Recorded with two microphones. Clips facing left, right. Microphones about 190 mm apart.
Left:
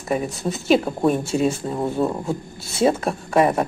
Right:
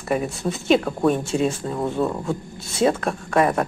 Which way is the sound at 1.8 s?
20° left (ahead or behind).